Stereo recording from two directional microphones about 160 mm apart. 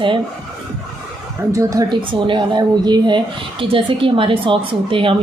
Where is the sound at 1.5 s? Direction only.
20° right (ahead or behind).